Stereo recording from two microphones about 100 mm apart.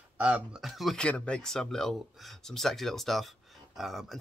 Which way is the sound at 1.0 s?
10° left (ahead or behind).